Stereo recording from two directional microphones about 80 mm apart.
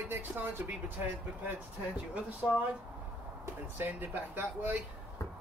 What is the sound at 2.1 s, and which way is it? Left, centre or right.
Speech, centre.